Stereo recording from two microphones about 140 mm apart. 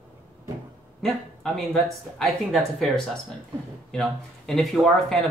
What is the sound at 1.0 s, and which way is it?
Speech, 5° left (ahead or behind).